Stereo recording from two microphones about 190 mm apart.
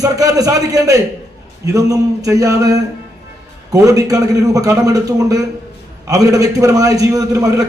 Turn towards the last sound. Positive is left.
turn(degrees=-15)  # may be behind; listen again after turning